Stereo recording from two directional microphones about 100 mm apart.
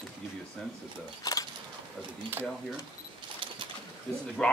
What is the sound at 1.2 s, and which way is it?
Keys jangling, 35° left (ahead or behind).